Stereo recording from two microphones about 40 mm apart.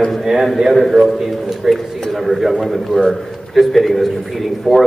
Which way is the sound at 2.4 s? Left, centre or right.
Centre.